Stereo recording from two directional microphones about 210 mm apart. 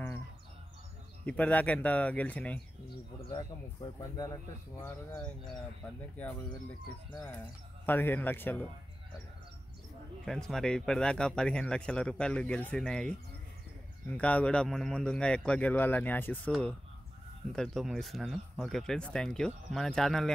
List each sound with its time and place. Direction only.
1.2 s speech: 5° left (ahead or behind)
3.3 s speech: 20° left (ahead or behind)
7.1 s speech: 20° left (ahead or behind)
10.2 s speech: centre (ahead or behind)